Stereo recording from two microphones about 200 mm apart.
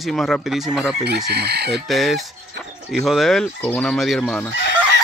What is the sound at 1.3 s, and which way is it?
Chicken, 55° right (ahead or behind).